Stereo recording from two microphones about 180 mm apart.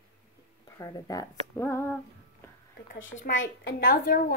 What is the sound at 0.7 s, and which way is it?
Speech, 20° left (ahead or behind).